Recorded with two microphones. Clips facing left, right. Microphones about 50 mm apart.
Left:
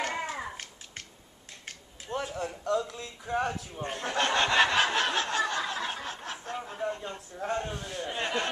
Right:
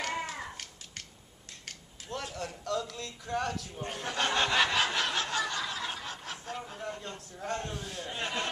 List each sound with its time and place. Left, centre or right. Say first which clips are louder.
0.0 s a sound: left 2 dB; left
1.7 s speech: left 4 dB; centre
4.8 s snicker: left 3 dB; left
6.5 s a man's voice: left 6 dB; centre